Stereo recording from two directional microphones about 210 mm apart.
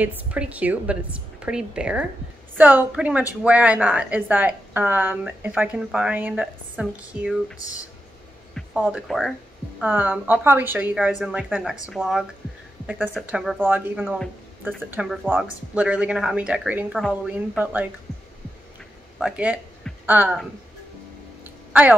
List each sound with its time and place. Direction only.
0.0 s a woman's voice: 5° right (ahead or behind)
8.5 s a woman's voice: 5° right (ahead or behind)
19.1 s speech: 5° right (ahead or behind)